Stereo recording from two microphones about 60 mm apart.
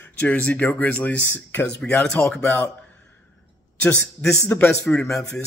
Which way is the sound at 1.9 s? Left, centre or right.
Left.